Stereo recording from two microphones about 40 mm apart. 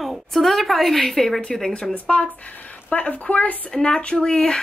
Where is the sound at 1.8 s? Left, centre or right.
Left.